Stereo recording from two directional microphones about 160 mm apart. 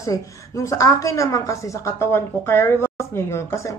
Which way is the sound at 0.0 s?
20° left (ahead or behind).